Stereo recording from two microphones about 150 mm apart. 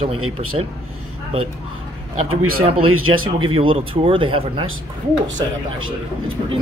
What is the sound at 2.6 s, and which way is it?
Speech, 40° right (ahead or behind).